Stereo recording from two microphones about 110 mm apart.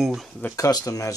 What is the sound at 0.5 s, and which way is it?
Speech, 30° left (ahead or behind).